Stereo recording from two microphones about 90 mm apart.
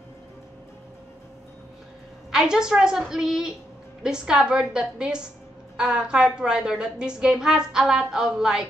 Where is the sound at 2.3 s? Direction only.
5° right (ahead or behind).